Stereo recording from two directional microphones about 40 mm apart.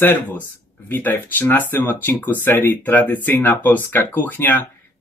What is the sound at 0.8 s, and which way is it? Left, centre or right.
Speech, left.